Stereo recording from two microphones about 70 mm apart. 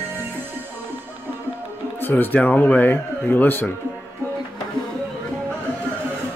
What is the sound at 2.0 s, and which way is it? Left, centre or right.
Speech, left.